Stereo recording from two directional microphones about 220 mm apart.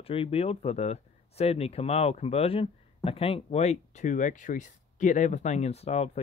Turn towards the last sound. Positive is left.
turn(degrees=30)  # may be behind; listen again after turning